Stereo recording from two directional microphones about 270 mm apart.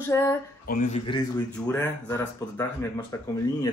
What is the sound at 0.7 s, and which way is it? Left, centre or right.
Speech, left.